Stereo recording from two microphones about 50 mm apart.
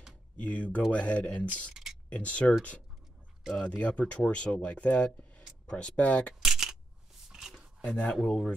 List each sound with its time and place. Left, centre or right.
0.4 s speech: left
1.7 s a sound: centre
2.0 s speech: left
3.5 s speech: left
6.4 s camera: centre
7.2 s a sound: centre
7.8 s speech: left